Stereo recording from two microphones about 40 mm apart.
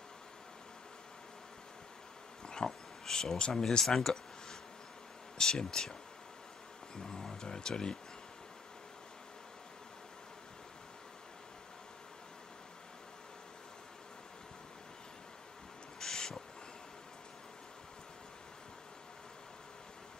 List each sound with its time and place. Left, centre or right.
2.4 s a sound: centre
3.8 s speech: centre
7.0 s speech: centre
16.0 s owl: centre